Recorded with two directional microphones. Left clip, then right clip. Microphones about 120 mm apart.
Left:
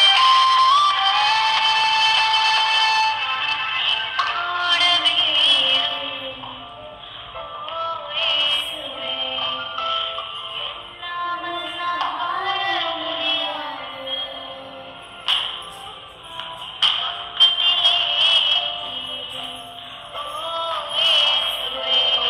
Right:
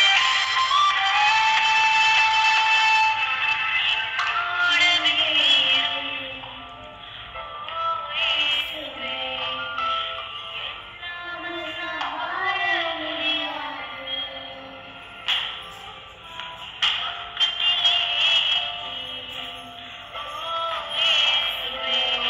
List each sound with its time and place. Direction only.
0.0 s music: 30° left (ahead or behind)
7.6 s music: 30° left (ahead or behind)
15.2 s music: 35° left (ahead or behind)